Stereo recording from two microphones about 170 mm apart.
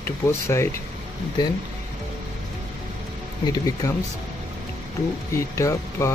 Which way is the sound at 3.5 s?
20° left (ahead or behind).